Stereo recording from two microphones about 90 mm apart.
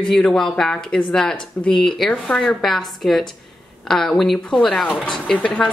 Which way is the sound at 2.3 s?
15° left (ahead or behind).